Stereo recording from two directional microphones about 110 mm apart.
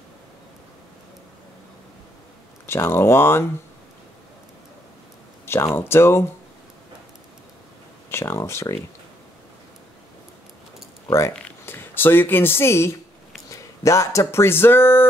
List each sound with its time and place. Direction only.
2.6 s speech: 20° left (ahead or behind)
5.4 s a sound: 20° left (ahead or behind)
5.8 s speech: 20° left (ahead or behind)
8.1 s speech: 25° left (ahead or behind)
11.1 s speech: 25° left (ahead or behind)
11.3 s speech: 15° left (ahead or behind)